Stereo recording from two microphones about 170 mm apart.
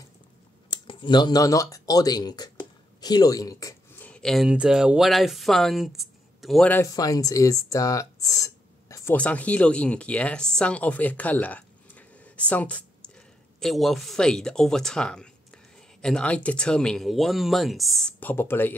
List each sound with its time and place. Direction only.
0.7 s a man's voice: 25° left (ahead or behind)
4.0 s speech: 5° left (ahead or behind)
6.7 s speech: 20° left (ahead or behind)
9.1 s speech: 10° left (ahead or behind)